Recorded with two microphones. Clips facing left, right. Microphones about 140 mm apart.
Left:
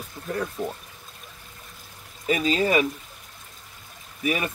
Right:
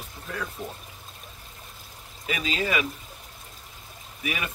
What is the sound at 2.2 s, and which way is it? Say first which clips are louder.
Speech: left 6 dB; 40° left (ahead or behind).